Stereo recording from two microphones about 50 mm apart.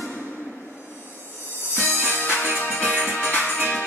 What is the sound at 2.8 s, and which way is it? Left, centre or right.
Music, left.